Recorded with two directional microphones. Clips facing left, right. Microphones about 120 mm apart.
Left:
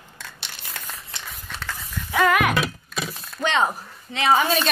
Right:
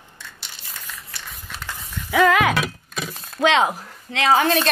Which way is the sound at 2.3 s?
90° right.